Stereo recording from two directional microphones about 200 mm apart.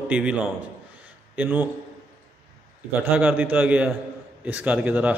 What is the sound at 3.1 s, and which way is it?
A man's voice, 10° right (ahead or behind).